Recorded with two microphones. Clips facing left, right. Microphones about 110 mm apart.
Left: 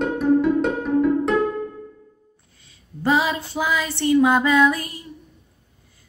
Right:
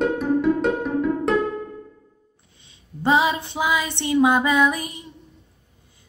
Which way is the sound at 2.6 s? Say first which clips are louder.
Even; 20° right (ahead or behind).